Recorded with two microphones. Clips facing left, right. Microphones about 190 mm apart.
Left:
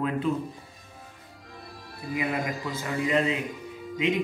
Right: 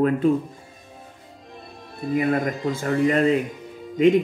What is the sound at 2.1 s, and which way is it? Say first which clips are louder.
Speech: right 7 dB; 50° right (ahead or behind).